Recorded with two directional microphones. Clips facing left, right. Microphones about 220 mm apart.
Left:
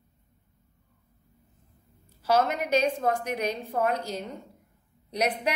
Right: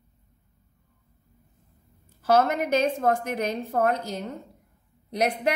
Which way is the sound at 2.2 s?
50° right (ahead or behind).